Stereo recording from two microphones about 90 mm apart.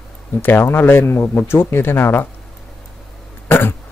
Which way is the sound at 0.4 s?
25° left (ahead or behind).